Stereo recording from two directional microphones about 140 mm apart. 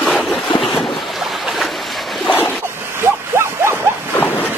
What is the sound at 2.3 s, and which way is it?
Ocean, 15° left (ahead or behind).